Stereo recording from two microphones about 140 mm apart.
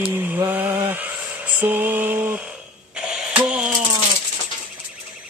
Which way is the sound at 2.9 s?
10° right (ahead or behind).